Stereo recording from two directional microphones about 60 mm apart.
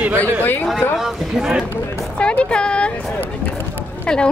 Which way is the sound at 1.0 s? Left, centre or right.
Centre.